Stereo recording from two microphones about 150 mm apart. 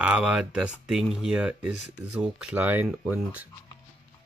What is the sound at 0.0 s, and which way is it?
Speech, 5° right (ahead or behind).